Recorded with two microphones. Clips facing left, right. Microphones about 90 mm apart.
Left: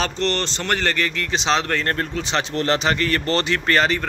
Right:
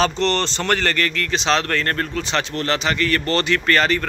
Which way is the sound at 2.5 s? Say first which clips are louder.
Left 3 dB; 30° left (ahead or behind).